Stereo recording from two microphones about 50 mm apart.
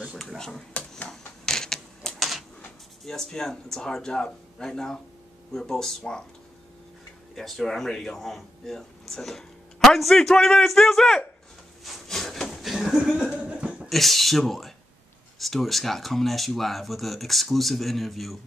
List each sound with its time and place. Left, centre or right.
0.7 s a sound: left
1.4 s mechanisms: centre
2.1 s a sound: centre
3.1 s speech: centre
7.3 s speech: centre
11.8 s chuckle: centre; by 13.8 s right
13.8 s speech: centre